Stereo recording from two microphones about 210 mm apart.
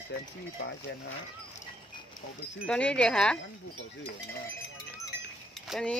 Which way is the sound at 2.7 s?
5° left (ahead or behind).